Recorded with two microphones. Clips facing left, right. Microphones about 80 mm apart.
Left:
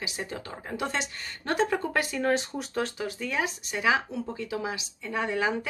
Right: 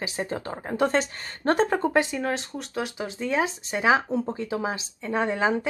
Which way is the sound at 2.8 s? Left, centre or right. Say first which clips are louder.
Right 3 dB; right.